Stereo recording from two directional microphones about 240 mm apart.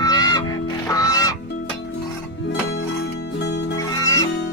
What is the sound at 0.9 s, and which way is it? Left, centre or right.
Goose, centre.